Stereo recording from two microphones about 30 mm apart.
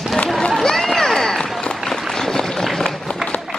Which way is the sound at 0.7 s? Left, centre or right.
Centre.